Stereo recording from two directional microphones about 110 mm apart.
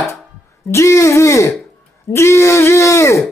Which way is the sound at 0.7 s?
25° left (ahead or behind).